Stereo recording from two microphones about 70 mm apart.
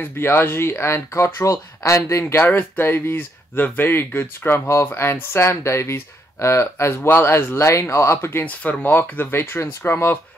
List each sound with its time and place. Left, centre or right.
0.0 s speech: left
8.5 s speech: left